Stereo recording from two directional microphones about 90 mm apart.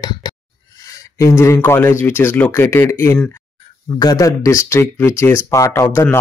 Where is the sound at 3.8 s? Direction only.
50° left (ahead or behind); by 6.2 s 30° left (ahead or behind).